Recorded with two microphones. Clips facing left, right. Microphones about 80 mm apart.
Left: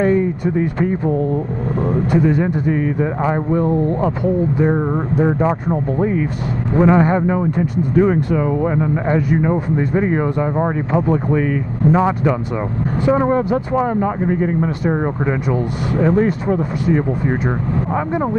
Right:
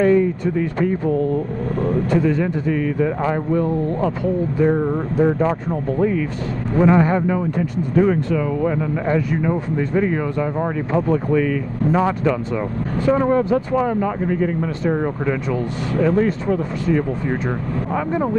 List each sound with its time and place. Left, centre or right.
0.0 s speech: centre
2.7 s speech: left
11.9 s speech: centre